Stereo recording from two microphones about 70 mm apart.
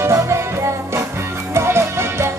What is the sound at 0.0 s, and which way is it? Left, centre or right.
Music, right.